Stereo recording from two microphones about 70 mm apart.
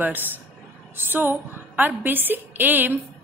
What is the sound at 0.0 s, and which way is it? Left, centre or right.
A woman's voice, right.